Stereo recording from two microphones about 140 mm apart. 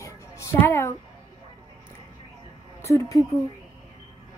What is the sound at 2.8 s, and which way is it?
Speech, 20° left (ahead or behind).